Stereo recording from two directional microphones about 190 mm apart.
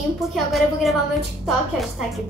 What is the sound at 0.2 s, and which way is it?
A woman's voice, centre (ahead or behind).